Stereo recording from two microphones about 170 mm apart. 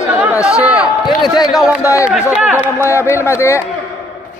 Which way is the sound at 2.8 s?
15° left (ahead or behind).